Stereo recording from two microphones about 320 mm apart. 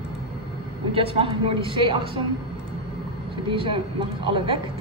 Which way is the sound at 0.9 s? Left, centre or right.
Centre.